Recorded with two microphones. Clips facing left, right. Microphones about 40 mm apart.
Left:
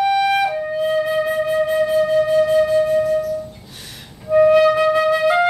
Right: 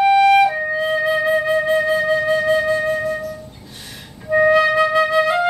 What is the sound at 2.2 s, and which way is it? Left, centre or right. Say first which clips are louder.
Flute: left 2 dB; right.